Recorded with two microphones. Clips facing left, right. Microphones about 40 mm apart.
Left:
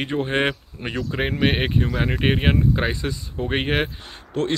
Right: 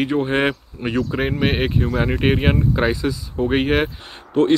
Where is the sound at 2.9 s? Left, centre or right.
Left.